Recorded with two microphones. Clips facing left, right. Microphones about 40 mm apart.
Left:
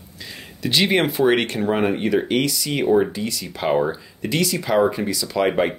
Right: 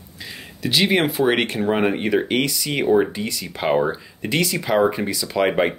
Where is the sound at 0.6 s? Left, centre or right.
Centre.